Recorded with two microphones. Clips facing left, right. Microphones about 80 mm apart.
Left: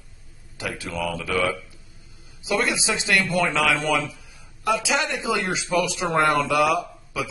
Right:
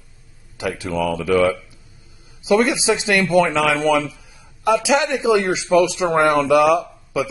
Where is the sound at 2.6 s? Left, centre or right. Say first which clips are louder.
Right 7 dB; right.